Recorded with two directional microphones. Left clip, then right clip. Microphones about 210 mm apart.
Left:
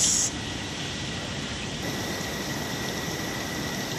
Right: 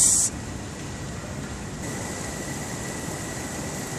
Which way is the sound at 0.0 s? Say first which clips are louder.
Right 1 dB; 20° right (ahead or behind).